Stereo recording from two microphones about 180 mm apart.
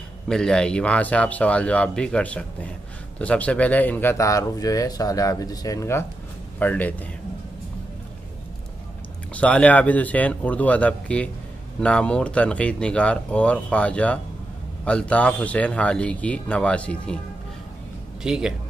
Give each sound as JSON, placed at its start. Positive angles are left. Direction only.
{"t": 0.3, "sound": "a man's voice", "side_deg": 5}
{"t": 9.3, "sound": "a man's voice", "side_deg": 5}
{"t": 18.2, "sound": "speech", "side_deg": -5}